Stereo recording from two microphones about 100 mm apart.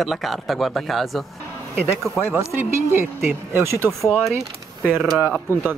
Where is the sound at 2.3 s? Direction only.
25° right (ahead or behind).